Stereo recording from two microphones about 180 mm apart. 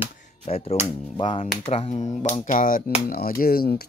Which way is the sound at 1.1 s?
30° left (ahead or behind).